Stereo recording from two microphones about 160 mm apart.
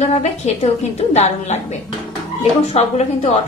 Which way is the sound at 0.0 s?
45° left (ahead or behind).